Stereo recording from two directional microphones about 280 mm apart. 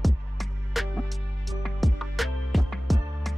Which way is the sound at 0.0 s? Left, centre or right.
Centre.